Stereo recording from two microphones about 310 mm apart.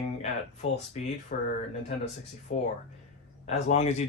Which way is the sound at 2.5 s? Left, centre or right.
Left.